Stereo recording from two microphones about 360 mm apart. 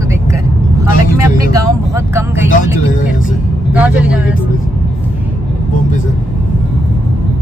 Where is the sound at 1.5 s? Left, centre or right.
Centre.